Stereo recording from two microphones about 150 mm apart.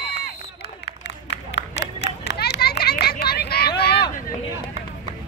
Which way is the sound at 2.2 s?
90° left.